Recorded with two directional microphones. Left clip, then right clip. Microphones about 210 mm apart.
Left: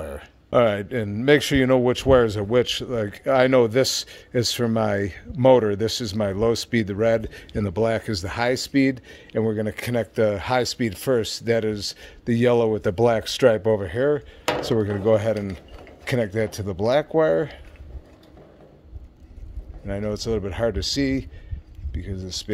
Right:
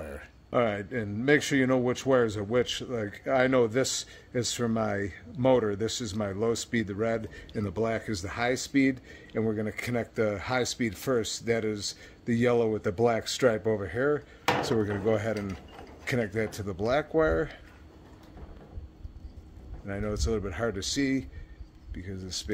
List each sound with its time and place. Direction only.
0.0 s speech: 35° left (ahead or behind)
19.9 s speech: 40° left (ahead or behind)